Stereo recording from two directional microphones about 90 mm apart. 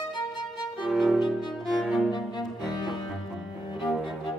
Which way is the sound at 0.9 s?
Centre (ahead or behind).